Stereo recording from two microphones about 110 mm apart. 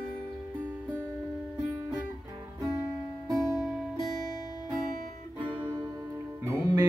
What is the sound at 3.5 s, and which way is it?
Music, centre (ahead or behind).